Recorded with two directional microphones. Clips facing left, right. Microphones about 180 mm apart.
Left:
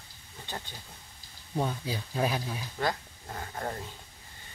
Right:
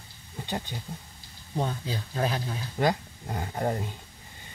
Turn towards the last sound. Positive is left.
turn(degrees=-20)  # may be behind; listen again after turning